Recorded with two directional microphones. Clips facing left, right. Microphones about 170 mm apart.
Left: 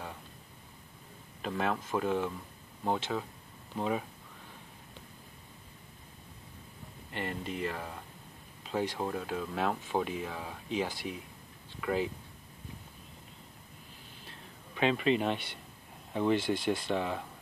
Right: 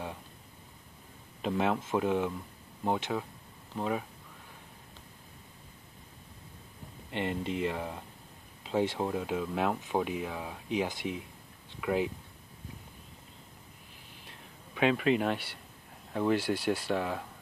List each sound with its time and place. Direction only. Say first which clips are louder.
1.4 s speech: right 3 dB; 20° right (ahead or behind)
3.7 s speech: even; centre (ahead or behind)
7.1 s speech: right 4 dB; 20° right (ahead or behind)
14.8 s speech: right 1 dB; 5° right (ahead or behind)
16.3 s speech: even; 10° right (ahead or behind)